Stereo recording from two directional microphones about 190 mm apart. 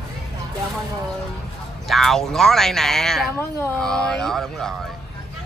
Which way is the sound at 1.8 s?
Centre (ahead or behind).